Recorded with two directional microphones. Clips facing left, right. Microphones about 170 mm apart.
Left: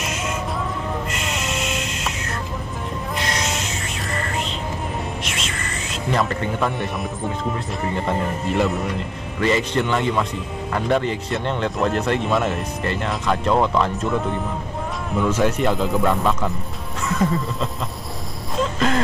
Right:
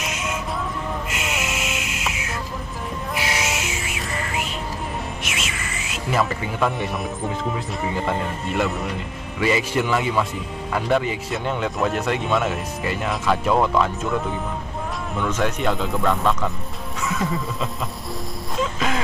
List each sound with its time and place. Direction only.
0.0 s music: centre (ahead or behind)
7.8 s speech: centre (ahead or behind)
18.6 s a sound: 5° right (ahead or behind)